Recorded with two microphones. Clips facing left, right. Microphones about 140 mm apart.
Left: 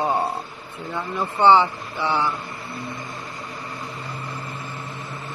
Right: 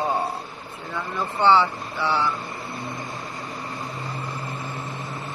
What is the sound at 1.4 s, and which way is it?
Speech, 15° left (ahead or behind).